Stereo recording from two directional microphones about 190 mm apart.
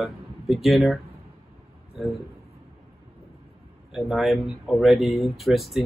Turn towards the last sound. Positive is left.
turn(degrees=0)  # may be behind; listen again after turning